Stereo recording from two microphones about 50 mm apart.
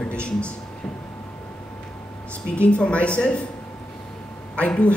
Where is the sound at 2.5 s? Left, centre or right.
Left.